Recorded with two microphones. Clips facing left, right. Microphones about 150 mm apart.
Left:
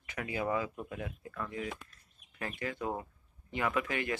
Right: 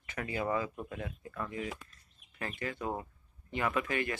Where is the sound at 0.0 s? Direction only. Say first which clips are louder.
Even; 10° left (ahead or behind); by 1.7 s 5° right (ahead or behind).